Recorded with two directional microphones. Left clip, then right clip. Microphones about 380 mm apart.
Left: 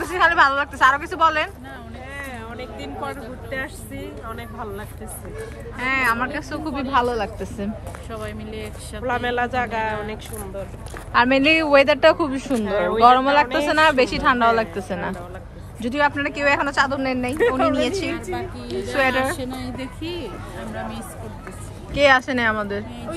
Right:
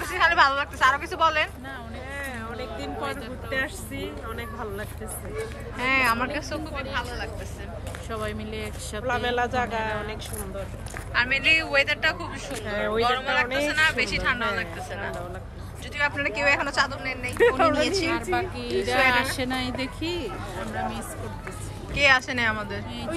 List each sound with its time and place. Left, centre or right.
0.0 s a woman's voice: centre
3.0 s speech: centre
5.8 s speech: centre
9.0 s a woman's voice: centre
11.1 s a woman's voice: centre
15.8 s speech: centre
19.3 s speech: centre
21.9 s speech: centre